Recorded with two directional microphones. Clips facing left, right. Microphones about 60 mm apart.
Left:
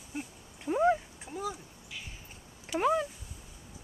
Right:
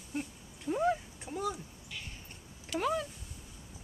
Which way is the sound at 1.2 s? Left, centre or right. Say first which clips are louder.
Right 1 dB; centre.